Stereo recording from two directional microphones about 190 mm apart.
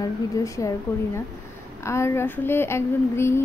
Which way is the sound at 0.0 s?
20° left (ahead or behind).